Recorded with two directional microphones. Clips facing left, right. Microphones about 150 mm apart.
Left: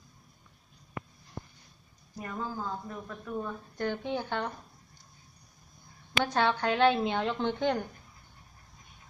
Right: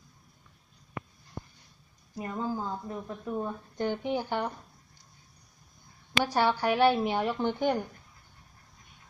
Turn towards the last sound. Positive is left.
turn(degrees=-10)  # may be behind; listen again after turning